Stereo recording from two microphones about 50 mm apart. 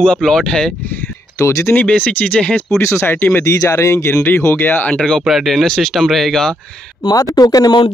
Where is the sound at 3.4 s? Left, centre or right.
Left.